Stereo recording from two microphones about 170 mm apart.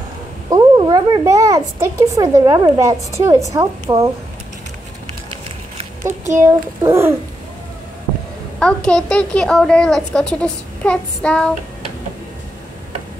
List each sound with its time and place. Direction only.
0.5 s a child's voice: 25° right (ahead or behind)
6.0 s a child's voice: 15° right (ahead or behind)
8.5 s a child's voice: 5° left (ahead or behind)